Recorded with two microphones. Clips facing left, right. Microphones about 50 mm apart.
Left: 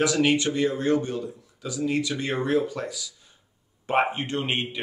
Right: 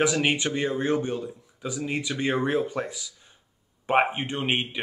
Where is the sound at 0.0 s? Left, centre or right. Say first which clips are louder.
Left 2 dB; right.